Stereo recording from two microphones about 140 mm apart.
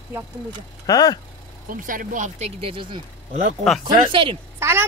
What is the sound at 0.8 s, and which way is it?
Speech, 25° left (ahead or behind).